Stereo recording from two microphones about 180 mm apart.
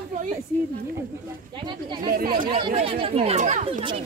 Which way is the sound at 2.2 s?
55° right (ahead or behind).